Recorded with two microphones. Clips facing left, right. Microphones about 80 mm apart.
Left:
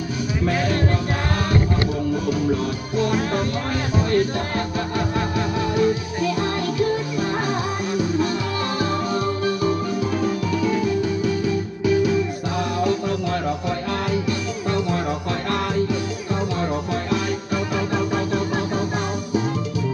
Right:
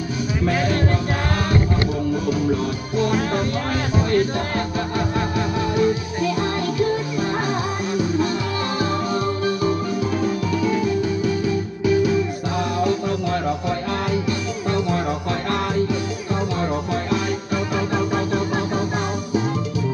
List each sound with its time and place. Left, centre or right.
2.2 s music: centre
4.6 s music: centre
7.5 s music: centre
17.7 s organ: centre